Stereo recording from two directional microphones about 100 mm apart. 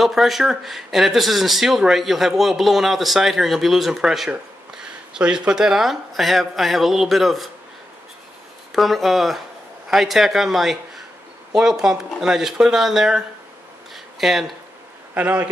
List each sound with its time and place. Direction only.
0.0 s speech: centre (ahead or behind)
8.7 s speech: centre (ahead or behind)
13.9 s a sound: 5° right (ahead or behind)
15.1 s speech: 15° right (ahead or behind)